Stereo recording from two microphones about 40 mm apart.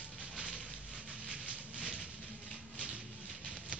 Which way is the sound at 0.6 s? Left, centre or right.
Right.